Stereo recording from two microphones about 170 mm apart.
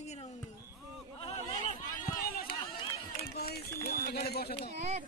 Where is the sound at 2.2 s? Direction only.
60° left (ahead or behind).